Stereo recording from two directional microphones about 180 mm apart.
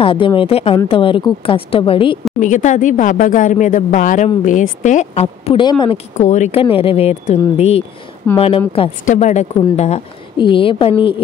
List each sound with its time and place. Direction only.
0.0 s a woman's voice: 30° left (ahead or behind)
2.4 s a woman's voice: 45° left (ahead or behind); by 5.9 s 25° left (ahead or behind)
6.1 s a woman's voice: 40° left (ahead or behind)